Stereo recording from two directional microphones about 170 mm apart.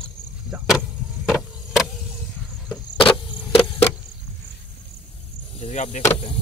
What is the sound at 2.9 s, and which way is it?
Vehicle, 30° left (ahead or behind).